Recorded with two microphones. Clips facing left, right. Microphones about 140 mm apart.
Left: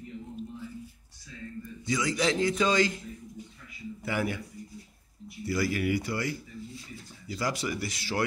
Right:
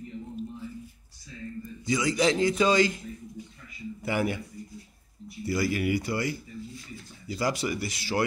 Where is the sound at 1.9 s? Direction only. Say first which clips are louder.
Right 3 dB; 15° right (ahead or behind).